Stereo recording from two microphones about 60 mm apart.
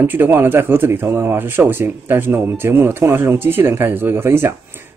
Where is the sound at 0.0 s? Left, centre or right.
Right.